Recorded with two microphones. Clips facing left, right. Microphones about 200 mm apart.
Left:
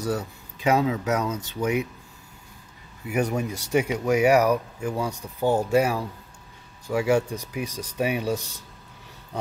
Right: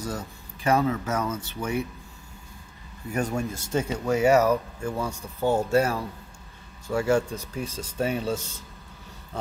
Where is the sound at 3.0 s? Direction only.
15° left (ahead or behind).